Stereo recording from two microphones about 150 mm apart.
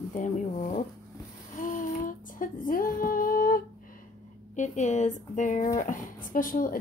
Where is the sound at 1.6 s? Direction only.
60° left (ahead or behind).